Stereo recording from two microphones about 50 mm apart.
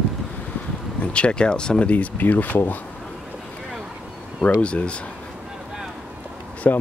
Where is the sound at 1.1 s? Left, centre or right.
Centre; by 2.8 s left.